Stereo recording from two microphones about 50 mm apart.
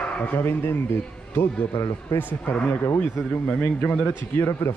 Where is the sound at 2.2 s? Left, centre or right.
Left.